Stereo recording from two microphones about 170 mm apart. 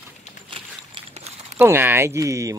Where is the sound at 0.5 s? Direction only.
35° right (ahead or behind).